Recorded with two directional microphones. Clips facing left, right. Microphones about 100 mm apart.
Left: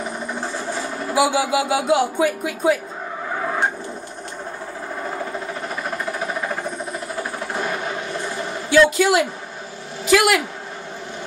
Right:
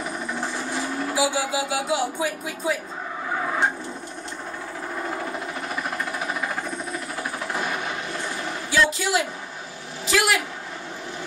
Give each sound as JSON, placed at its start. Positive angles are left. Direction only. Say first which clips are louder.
{"t": 1.1, "sound": "speech", "louder": "left 7 dB", "side_deg": 60}
{"t": 8.6, "sound": "a man's voice", "louder": "left 8 dB", "side_deg": 60}